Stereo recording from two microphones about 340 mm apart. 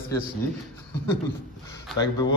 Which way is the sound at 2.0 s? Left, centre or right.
Centre.